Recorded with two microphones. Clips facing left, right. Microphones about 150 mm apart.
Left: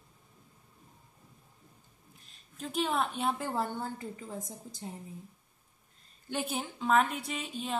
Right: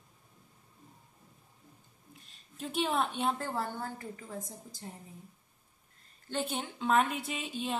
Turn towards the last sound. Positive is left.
turn(degrees=0)  # may be behind; listen again after turning